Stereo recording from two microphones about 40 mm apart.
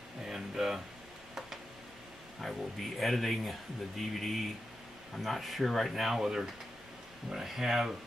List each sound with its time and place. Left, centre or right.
0.2 s music: centre
2.4 s speech: centre